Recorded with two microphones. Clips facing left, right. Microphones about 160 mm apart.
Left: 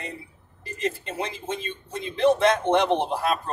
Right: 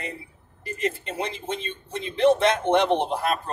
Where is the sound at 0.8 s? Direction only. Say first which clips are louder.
Right 1 dB; 20° right (ahead or behind).